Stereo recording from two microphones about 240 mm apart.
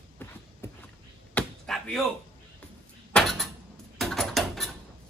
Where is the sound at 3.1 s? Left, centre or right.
Centre.